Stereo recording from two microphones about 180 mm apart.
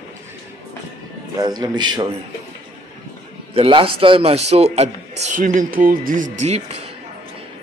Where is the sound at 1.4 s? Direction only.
20° right (ahead or behind).